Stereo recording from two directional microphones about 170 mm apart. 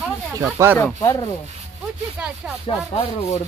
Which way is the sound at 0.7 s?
15° left (ahead or behind).